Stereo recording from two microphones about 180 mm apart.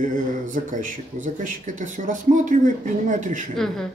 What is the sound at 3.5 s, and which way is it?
Speech, centre (ahead or behind).